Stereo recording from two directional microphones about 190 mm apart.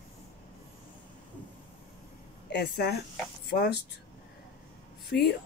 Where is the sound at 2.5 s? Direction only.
60° left (ahead or behind).